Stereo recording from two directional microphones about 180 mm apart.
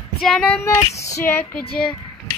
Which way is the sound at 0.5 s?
15° left (ahead or behind).